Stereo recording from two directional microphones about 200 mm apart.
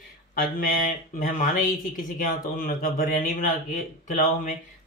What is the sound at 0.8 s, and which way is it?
Speech, 40° left (ahead or behind).